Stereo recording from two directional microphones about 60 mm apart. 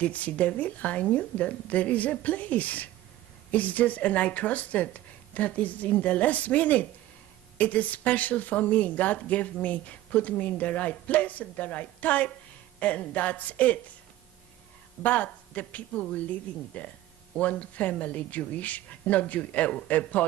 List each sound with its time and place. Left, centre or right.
0.0 s speech: left
15.0 s speech: left